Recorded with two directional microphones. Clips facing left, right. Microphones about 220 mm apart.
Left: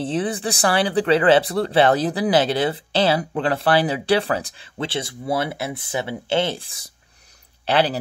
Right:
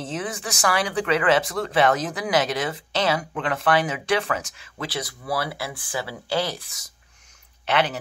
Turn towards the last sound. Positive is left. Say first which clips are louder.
# left 4 dB
turn(degrees=35)  # may be behind; listen again after turning